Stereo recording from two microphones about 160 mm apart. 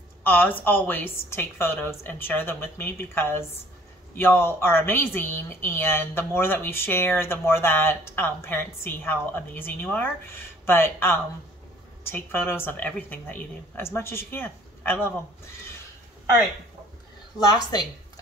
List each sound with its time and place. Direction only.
0.2 s speech: 10° left (ahead or behind)
17.5 s speech: 25° left (ahead or behind)